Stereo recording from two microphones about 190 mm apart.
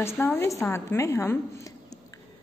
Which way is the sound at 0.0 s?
15° left (ahead or behind).